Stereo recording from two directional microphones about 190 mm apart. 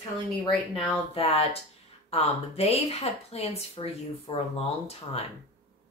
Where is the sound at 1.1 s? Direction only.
30° left (ahead or behind).